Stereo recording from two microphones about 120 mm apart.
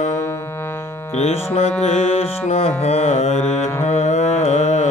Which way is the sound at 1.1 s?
60° left (ahead or behind).